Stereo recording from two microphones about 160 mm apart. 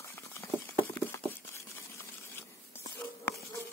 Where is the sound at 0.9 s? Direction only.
15° left (ahead or behind).